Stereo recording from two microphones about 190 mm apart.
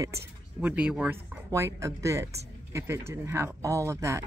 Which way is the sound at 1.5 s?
15° right (ahead or behind).